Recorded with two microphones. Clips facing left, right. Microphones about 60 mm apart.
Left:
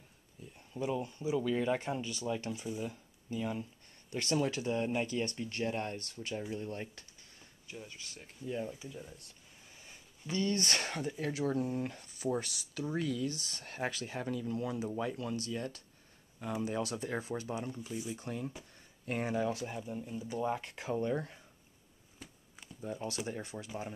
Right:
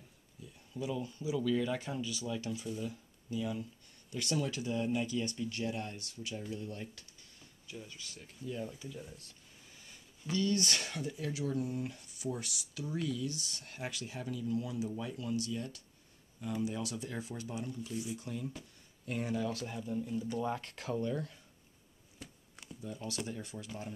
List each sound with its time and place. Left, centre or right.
0.6 s speech: left
6.5 s a sound: left
7.7 s speech: left
8.9 s speech: centre
9.8 s speech: left
22.2 s chopping: centre
22.8 s speech: left